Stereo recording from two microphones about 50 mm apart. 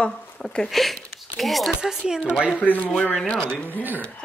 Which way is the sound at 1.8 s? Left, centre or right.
Centre.